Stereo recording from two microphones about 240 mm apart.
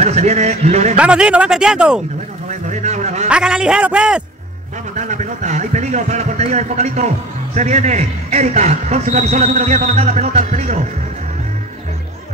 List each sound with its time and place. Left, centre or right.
0.0 s speech: right
0.9 s speech: centre
2.7 s a sound: right
3.3 s speech: centre
4.9 s speech: right